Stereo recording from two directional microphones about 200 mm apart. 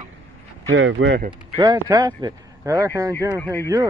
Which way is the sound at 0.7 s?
70° right (ahead or behind).